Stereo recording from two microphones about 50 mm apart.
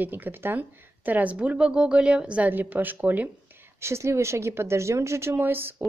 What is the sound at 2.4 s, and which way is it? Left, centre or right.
Speech, right.